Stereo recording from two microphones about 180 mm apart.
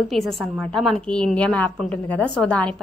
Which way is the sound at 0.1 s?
Centre (ahead or behind).